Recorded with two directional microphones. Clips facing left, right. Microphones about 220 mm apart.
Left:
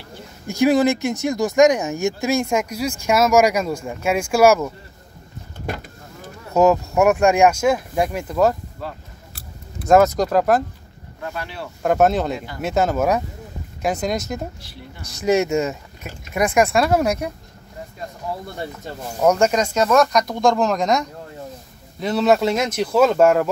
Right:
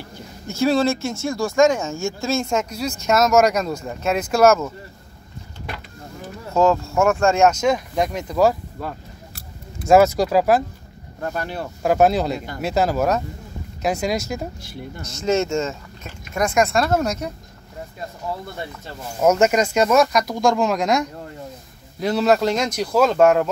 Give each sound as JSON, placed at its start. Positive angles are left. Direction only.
{"t": 0.5, "sound": "speech", "side_deg": 15}
{"t": 6.5, "sound": "speech", "side_deg": 20}
{"t": 9.8, "sound": "speech", "side_deg": -5}
{"t": 11.2, "sound": "speech", "side_deg": -45}
{"t": 11.8, "sound": "speech", "side_deg": -5}
{"t": 15.1, "sound": "speech", "side_deg": 15}
{"t": 19.2, "sound": "speech", "side_deg": -5}